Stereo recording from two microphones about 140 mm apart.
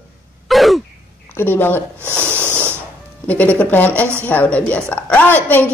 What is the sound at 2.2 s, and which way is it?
Snort, 10° left (ahead or behind).